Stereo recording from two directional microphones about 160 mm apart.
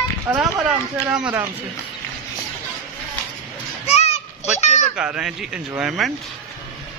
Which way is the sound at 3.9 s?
40° left (ahead or behind).